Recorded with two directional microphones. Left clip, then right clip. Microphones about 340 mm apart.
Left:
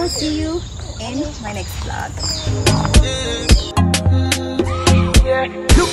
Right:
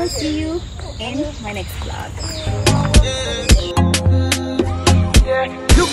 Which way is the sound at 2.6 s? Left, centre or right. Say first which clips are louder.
Right 1 dB; centre.